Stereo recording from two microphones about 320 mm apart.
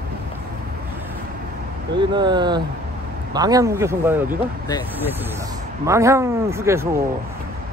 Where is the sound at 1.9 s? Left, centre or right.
Centre.